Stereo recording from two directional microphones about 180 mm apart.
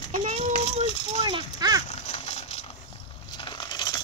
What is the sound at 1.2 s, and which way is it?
Speech, 25° right (ahead or behind).